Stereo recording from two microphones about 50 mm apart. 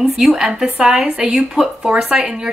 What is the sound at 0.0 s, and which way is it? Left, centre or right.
Speech, centre.